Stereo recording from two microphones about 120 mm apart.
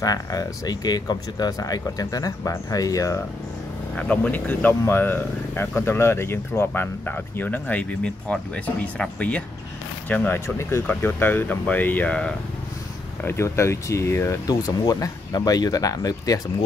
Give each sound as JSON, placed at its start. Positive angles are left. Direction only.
{"t": 0.0, "sound": "speech", "side_deg": 30}
{"t": 3.9, "sound": "speech", "side_deg": 10}
{"t": 13.2, "sound": "speech", "side_deg": 20}